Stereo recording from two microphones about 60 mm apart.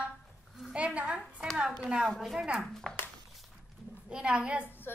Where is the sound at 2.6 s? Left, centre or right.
Centre.